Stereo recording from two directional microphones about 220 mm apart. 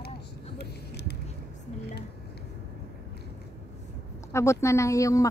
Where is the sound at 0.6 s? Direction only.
50° left (ahead or behind).